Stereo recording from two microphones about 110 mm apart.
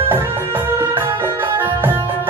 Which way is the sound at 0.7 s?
20° right (ahead or behind).